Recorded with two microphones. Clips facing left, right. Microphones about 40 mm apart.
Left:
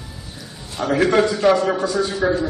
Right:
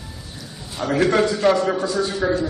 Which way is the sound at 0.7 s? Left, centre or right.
Centre.